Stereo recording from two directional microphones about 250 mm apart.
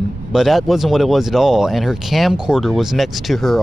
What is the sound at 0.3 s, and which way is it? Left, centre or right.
Speech, centre.